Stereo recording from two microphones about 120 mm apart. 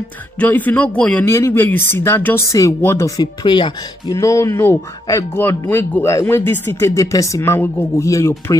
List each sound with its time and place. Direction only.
0.4 s speech: 15° left (ahead or behind)
3.2 s speech: 40° left (ahead or behind)
4.1 s speech: 25° left (ahead or behind)